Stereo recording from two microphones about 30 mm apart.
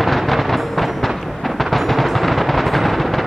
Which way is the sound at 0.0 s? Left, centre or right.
Centre.